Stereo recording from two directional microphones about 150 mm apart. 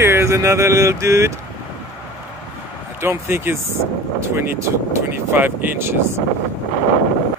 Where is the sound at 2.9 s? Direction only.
15° right (ahead or behind).